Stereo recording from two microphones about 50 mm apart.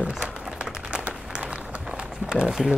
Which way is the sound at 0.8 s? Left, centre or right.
Right.